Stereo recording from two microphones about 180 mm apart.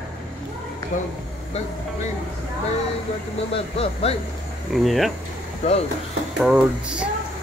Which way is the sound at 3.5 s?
35° left (ahead or behind).